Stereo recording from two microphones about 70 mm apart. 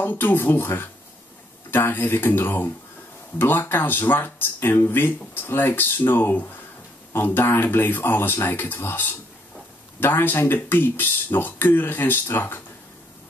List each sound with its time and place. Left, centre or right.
0.0 s speech: left